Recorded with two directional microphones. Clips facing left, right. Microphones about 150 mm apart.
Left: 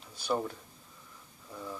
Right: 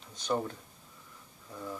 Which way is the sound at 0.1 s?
10° left (ahead or behind).